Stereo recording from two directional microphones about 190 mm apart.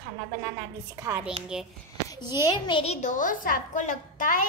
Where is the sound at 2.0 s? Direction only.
20° left (ahead or behind).